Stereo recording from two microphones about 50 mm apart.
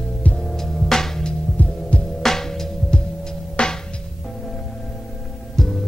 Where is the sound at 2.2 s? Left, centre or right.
Centre.